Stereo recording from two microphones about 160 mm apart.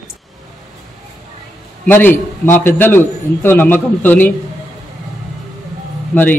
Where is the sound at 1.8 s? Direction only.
10° left (ahead or behind).